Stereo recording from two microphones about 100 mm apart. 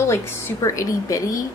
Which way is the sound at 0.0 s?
30° left (ahead or behind).